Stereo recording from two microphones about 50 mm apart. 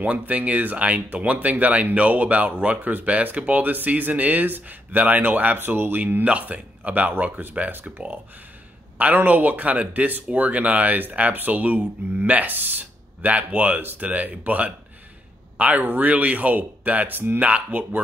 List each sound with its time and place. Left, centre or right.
0.0 s speech: right
8.9 s speech: right